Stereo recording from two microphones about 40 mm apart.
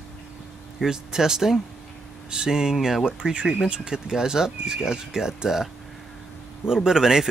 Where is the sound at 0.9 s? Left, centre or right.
Centre.